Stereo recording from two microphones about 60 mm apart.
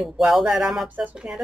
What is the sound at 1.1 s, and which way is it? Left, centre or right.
Speech, centre.